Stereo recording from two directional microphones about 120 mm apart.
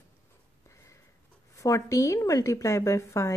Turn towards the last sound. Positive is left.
turn(degrees=25)  # may be behind; listen again after turning